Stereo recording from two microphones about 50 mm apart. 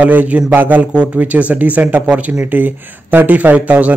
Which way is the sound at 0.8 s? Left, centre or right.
Right.